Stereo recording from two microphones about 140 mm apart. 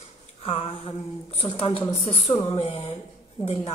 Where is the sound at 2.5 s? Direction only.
40° left (ahead or behind).